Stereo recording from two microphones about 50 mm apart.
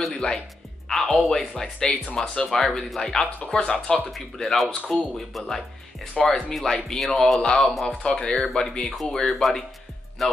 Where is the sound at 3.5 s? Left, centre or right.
Left.